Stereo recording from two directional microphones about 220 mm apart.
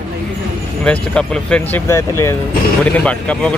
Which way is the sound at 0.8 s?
5° left (ahead or behind).